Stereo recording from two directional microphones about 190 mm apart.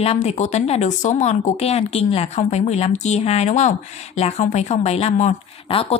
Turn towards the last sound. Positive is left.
turn(degrees=30)  # may be behind; listen again after turning